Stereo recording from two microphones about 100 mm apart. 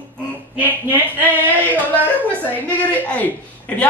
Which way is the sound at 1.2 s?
20° right (ahead or behind).